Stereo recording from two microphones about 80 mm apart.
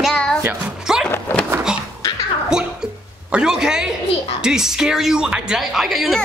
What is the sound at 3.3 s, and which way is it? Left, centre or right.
A child's voice, centre.